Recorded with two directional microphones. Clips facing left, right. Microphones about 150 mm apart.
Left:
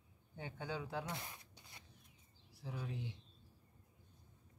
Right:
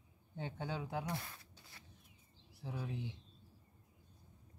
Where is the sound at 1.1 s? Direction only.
20° left (ahead or behind).